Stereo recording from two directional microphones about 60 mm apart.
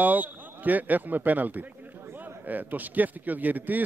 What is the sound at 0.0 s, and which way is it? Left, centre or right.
A man's voice, right.